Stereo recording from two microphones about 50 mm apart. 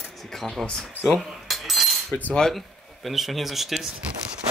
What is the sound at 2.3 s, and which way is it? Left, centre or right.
Cutlery, centre.